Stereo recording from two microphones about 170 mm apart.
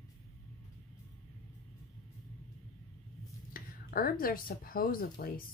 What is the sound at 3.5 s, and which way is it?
Speech, 60° left (ahead or behind).